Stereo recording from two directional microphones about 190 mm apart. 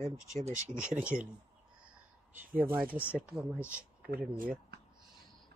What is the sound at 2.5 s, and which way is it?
Speech, 50° right (ahead or behind).